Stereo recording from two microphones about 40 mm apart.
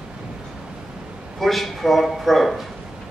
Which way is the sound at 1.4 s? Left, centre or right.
Centre.